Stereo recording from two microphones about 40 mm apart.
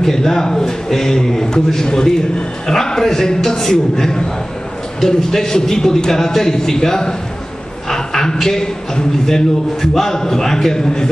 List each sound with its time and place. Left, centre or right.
0.0 s a man's voice: centre